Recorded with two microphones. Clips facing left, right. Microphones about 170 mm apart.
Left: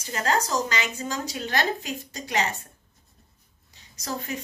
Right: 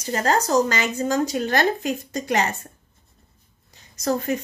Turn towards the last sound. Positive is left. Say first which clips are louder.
# right 10 dB
turn(degrees=-50)  # may be behind; listen again after turning